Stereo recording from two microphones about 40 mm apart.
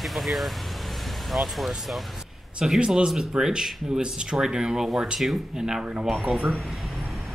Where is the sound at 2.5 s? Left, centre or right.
Centre.